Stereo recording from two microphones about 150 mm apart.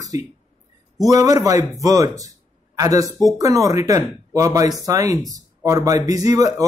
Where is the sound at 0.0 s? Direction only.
25° right (ahead or behind).